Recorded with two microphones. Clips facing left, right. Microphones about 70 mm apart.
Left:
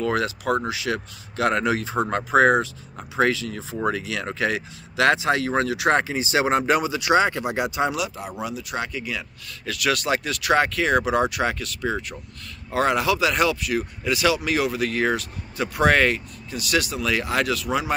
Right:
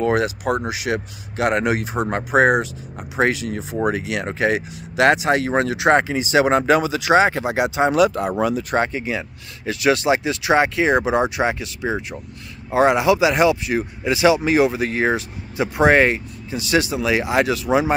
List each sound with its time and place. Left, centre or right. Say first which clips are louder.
0.1 s speech: right 3 dB; right
5.9 s speech: right 5 dB; right
8.1 s speech: right 10 dB; right